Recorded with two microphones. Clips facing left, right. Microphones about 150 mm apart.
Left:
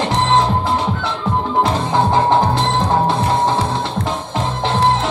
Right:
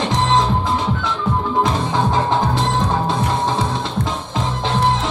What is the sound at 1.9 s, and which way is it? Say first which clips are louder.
Music: left 4 dB; 15° left (ahead or behind).